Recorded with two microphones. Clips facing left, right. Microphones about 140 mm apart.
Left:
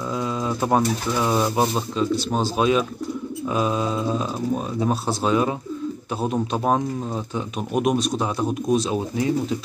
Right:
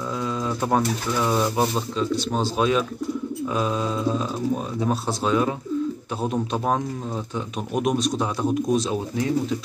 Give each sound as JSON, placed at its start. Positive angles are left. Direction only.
{"t": 0.2, "sound": "speech", "side_deg": 15}
{"t": 2.0, "sound": "speech", "side_deg": 5}